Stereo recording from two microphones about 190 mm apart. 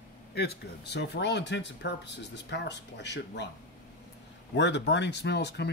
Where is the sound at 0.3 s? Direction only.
60° left (ahead or behind).